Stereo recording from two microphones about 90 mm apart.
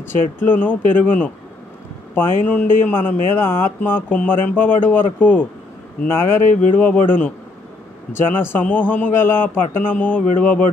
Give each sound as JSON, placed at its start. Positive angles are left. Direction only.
{"t": 0.4, "sound": "speech", "side_deg": 20}